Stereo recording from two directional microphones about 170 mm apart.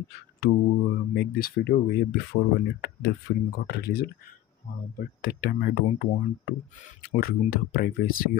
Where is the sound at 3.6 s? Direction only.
70° left (ahead or behind).